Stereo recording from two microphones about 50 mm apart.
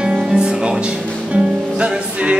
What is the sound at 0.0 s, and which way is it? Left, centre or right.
Music, centre.